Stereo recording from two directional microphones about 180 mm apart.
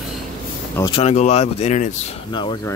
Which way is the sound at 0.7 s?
20° left (ahead or behind).